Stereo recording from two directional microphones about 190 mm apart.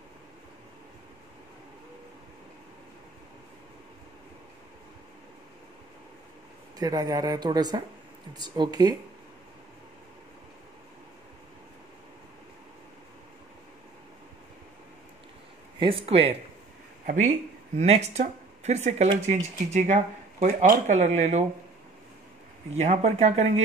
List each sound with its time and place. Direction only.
6.8 s a woman's voice: 20° right (ahead or behind)
15.8 s a woman's voice: 30° right (ahead or behind)
17.0 s speech: 40° right (ahead or behind)
22.8 s speech: 35° right (ahead or behind)